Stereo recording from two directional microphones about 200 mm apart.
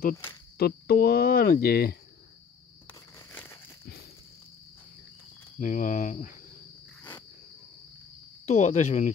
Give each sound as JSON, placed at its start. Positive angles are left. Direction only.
{"t": 0.6, "sound": "speech", "side_deg": 50}
{"t": 2.9, "sound": "a sound", "side_deg": 10}
{"t": 5.6, "sound": "speech", "side_deg": 40}
{"t": 8.5, "sound": "speech", "side_deg": 35}